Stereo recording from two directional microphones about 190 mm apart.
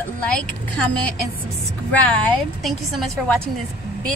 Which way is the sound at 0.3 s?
5° left (ahead or behind).